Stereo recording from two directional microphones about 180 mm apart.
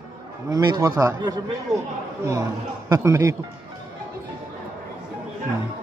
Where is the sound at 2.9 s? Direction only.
15° right (ahead or behind).